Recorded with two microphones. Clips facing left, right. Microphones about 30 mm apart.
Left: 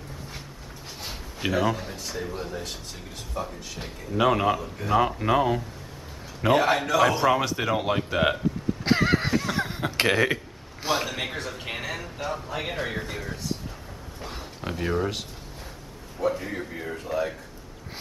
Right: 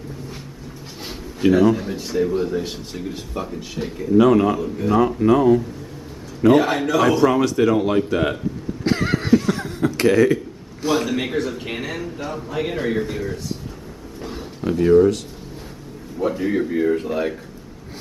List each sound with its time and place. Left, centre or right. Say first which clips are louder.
1.5 s a man's voice: right 9 dB; centre
1.9 s speech: right 12 dB; centre
4.2 s a man's voice: right 6 dB; centre
4.6 s a man's voice: right 9 dB; centre
4.9 s a man's voice: right 5 dB; centre
6.5 s a man's voice: right 3 dB; centre
8.8 s a sound: right 2 dB; centre
9.6 s chuckle: right 5 dB; left
11.1 s a man's voice: right 9 dB; centre
14.2 s a sound: right 9 dB; centre
16.2 s speech: right 7 dB; centre